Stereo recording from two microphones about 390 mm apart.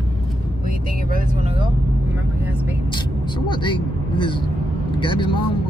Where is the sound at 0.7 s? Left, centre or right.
Right.